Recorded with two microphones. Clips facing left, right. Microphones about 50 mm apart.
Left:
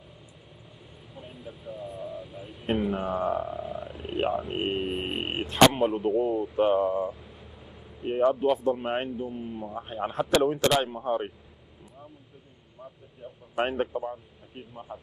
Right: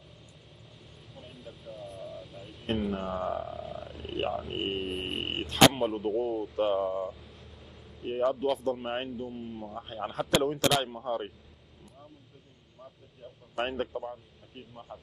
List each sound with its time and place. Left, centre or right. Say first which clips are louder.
1.1 s speech: left 4 dB; centre
4.6 s a sound: left 4 dB; centre
5.3 s speech: left 2 dB; centre
8.7 s a man's voice: left 4 dB; centre
12.8 s a man's voice: left 4 dB; centre